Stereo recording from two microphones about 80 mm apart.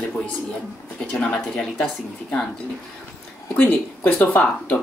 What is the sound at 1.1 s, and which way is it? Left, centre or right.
Speech, centre.